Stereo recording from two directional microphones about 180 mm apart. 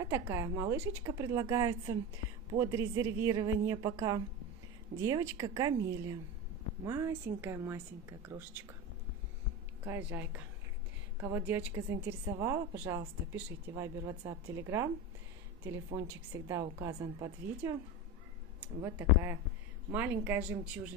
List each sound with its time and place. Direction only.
0.0 s speech: 15° right (ahead or behind)
9.8 s speech: 10° right (ahead or behind)
16.1 s speech: 15° right (ahead or behind)